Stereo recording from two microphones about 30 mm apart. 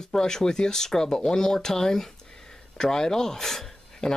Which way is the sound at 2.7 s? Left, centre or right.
Left.